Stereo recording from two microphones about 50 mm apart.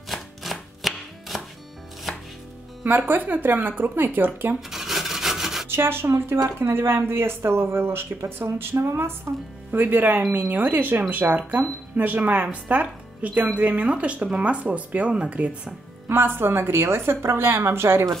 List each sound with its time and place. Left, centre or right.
0.1 s chopping: centre
3.1 s speech: right
4.6 s rub: centre
5.7 s speech: right
16.1 s speech: right